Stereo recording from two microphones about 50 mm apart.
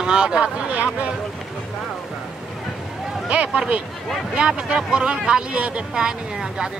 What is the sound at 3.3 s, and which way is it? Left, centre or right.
Speech, right.